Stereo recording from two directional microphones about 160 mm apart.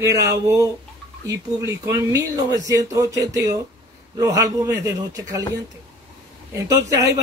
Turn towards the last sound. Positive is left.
turn(degrees=-20)  # may be behind; listen again after turning